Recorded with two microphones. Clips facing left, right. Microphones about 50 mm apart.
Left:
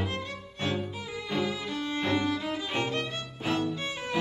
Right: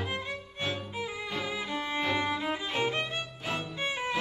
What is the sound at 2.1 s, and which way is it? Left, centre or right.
Music, right.